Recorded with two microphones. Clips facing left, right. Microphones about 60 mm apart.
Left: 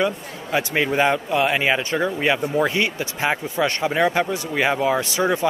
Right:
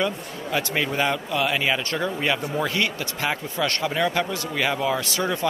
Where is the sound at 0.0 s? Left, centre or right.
Centre.